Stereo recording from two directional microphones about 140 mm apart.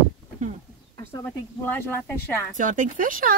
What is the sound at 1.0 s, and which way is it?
Speech, 15° left (ahead or behind).